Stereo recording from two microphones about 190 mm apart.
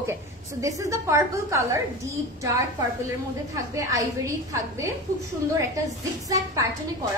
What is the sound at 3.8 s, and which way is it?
Speech, 15° right (ahead or behind).